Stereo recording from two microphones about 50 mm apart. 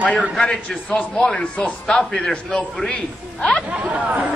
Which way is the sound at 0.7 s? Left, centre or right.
Left.